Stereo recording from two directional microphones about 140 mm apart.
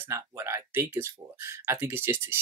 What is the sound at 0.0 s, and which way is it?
Speech, 20° right (ahead or behind).